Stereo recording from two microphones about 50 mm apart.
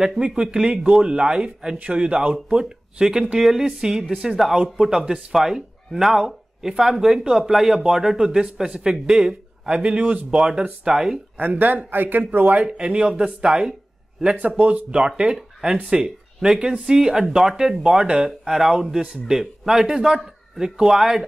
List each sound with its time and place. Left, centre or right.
0.2 s speech: centre
9.7 s speech: right
11.3 s speech: right
12.5 s speech: centre
14.6 s speech: right
15.0 s speech: centre